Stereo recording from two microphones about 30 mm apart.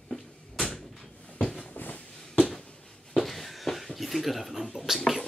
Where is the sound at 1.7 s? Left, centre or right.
Left.